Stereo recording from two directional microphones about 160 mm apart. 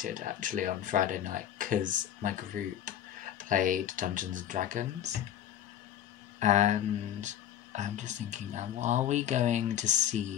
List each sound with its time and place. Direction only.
0.0 s speech: 55° right (ahead or behind)
6.4 s speech: 45° right (ahead or behind)